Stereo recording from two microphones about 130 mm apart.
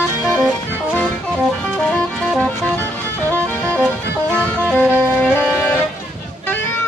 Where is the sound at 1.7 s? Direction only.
5° left (ahead or behind).